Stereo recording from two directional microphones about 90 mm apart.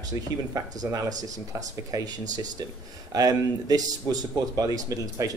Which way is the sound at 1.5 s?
40° right (ahead or behind).